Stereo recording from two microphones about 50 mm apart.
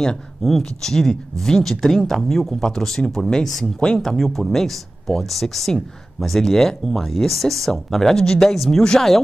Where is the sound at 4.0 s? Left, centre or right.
Centre.